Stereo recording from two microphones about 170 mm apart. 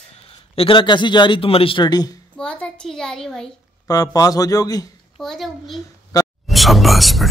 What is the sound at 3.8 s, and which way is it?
Speech, 20° left (ahead or behind).